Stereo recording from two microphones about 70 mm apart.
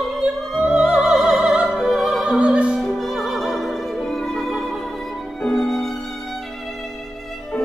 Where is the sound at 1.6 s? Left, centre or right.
Centre.